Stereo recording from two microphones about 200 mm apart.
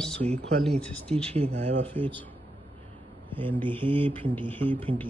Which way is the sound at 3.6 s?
10° left (ahead or behind).